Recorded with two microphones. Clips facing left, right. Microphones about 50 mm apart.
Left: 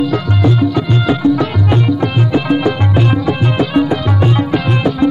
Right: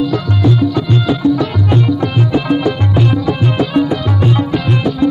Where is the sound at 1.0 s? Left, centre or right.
Left.